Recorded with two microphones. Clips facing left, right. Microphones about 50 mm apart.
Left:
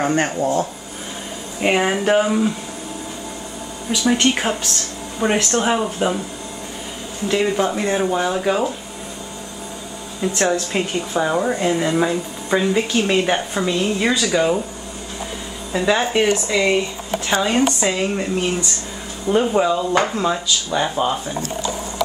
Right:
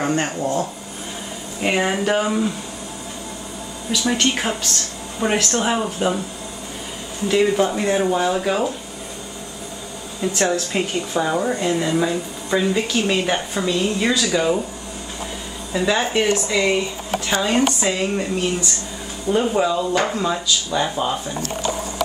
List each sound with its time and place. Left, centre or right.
0.1 s speech: centre
1.6 s speech: centre
3.9 s speech: centre
7.2 s speech: centre
10.2 s speech: centre
15.7 s speech: centre